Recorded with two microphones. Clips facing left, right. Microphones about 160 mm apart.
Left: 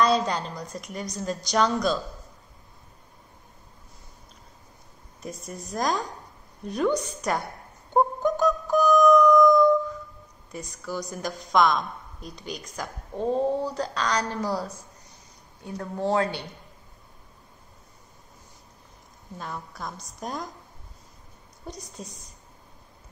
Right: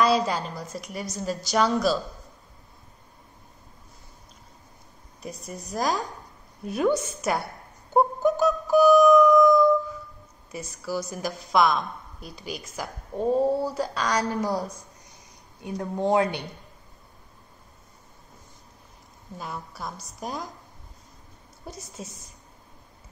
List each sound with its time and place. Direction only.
0.0 s a woman's voice: 5° right (ahead or behind)
5.2 s a woman's voice: centre (ahead or behind)
7.9 s music: 5° right (ahead or behind)
10.5 s a woman's voice: centre (ahead or behind)
19.3 s a woman's voice: 5° right (ahead or behind)
21.6 s a woman's voice: 5° right (ahead or behind)